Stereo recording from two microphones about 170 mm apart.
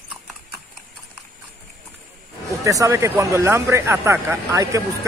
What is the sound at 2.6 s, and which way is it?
Speech, 20° right (ahead or behind).